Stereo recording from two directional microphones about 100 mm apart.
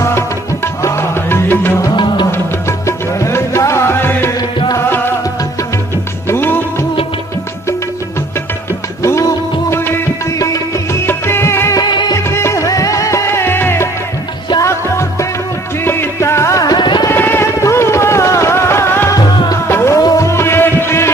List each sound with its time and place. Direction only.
0.8 s music: 25° left (ahead or behind)
3.2 s music: 30° left (ahead or behind)
6.2 s music: 25° left (ahead or behind)
9.7 s music: 25° left (ahead or behind)
11.9 s music: 45° left (ahead or behind)
12.3 s music: 25° left (ahead or behind)
16.7 s music: 50° left (ahead or behind)
17.1 s music: 20° left (ahead or behind)